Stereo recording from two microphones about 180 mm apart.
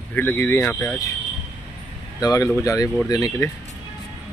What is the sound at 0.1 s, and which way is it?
Speech, 10° left (ahead or behind).